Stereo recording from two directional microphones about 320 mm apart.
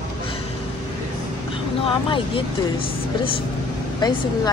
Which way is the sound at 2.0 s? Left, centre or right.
Centre.